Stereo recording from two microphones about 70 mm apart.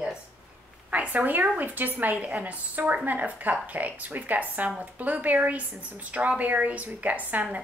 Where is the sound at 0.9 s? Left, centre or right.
Right.